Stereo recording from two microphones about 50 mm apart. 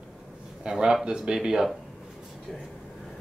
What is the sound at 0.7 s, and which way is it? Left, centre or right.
Speech, centre.